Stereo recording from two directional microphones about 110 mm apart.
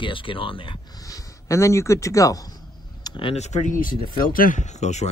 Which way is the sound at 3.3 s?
90° left.